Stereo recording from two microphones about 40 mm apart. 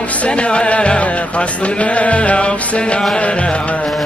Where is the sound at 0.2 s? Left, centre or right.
Left.